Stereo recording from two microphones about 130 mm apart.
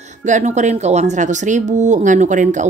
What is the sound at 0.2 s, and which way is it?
Speech, 70° right (ahead or behind).